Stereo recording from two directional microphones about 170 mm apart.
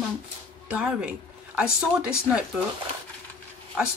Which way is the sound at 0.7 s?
5° right (ahead or behind).